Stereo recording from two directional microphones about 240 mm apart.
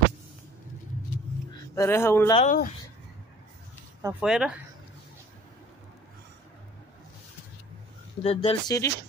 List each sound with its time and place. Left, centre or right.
1.5 s speech: centre
2.3 s speech: left
4.0 s speech: centre
8.2 s speech: left